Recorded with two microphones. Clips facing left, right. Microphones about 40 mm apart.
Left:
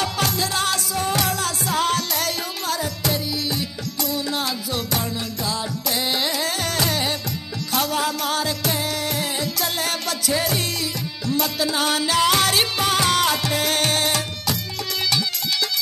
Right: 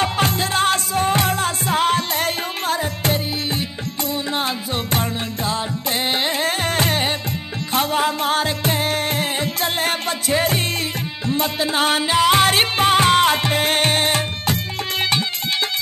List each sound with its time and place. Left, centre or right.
0.0 s music: right